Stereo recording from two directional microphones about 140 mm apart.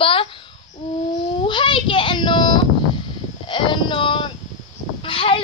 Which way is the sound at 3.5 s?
35° left (ahead or behind).